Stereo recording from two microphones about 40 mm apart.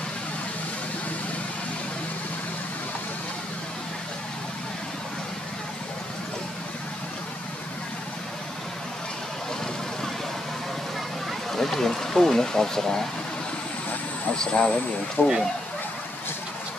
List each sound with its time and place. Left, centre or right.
11.5 s speech: centre
14.3 s speech: left
15.2 s speech: left